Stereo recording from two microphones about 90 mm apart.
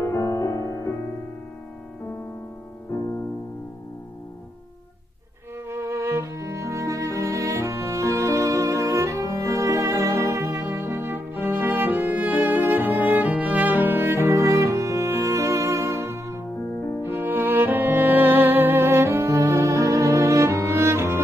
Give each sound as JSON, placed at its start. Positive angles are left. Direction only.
{"t": 0.0, "sound": "music", "side_deg": 35}
{"t": 5.7, "sound": "music", "side_deg": -35}